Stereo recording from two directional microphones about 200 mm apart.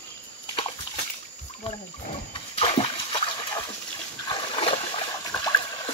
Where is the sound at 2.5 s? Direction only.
25° left (ahead or behind).